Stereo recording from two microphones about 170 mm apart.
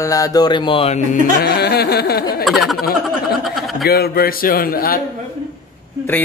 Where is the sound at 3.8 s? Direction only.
65° left (ahead or behind).